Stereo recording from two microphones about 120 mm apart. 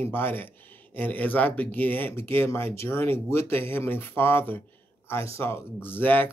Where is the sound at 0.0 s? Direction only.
15° left (ahead or behind).